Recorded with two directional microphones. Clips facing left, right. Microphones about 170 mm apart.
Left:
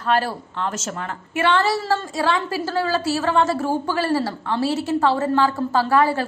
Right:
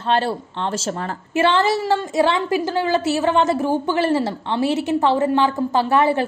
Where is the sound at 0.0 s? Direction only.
25° right (ahead or behind).